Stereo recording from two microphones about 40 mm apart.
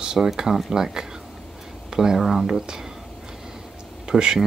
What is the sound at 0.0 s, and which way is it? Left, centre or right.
Speech, centre.